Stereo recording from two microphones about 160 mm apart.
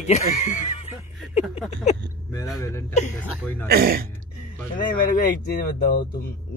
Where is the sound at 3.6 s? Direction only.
70° right (ahead or behind).